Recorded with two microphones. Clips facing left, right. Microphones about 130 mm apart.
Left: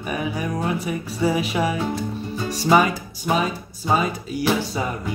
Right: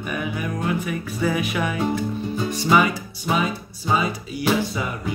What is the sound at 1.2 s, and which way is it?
Music, 30° left (ahead or behind).